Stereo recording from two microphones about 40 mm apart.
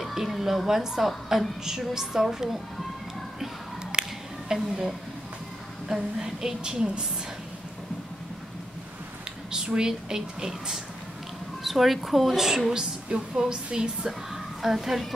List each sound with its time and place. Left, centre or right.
0.0 s a woman's voice: centre
3.9 s scissors: right
4.5 s a woman's voice: centre
9.5 s a woman's voice: centre
11.6 s a woman's voice: centre